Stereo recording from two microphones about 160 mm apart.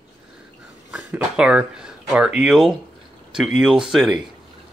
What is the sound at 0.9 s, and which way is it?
Speech, 5° right (ahead or behind).